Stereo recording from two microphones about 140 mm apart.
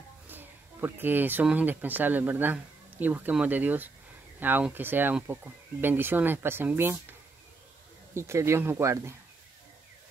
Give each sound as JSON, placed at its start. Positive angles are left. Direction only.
{"t": 0.3, "sound": "speech", "side_deg": -15}
{"t": 8.1, "sound": "speech", "side_deg": -20}